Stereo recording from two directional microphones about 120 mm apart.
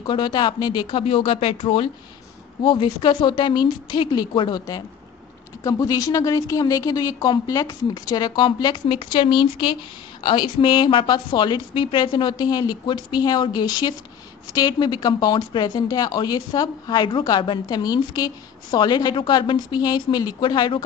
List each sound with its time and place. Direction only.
0.0 s speech: 40° left (ahead or behind)
1.0 s speech: 50° left (ahead or behind)